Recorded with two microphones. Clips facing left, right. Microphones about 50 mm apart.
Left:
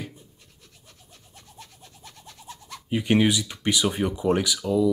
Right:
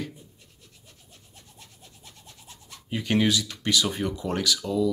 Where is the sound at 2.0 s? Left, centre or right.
Left.